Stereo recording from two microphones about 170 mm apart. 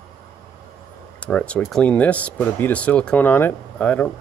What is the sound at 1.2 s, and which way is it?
Speech, 5° left (ahead or behind).